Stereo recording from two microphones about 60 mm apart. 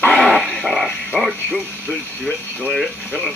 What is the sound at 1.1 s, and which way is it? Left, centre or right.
Speech, left.